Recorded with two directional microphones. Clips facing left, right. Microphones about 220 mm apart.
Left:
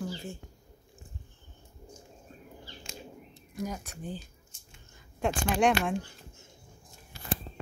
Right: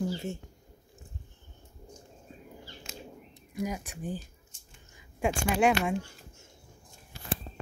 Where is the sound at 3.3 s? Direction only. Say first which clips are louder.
Right 3 dB; 10° right (ahead or behind).